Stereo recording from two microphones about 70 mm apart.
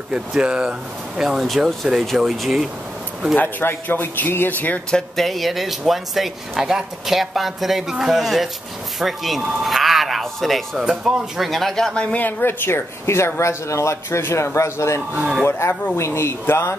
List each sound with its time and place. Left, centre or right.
0.1 s speech: centre
3.3 s speech: left
4.9 s speech: centre
10.8 s speech: centre
12.3 s speech: left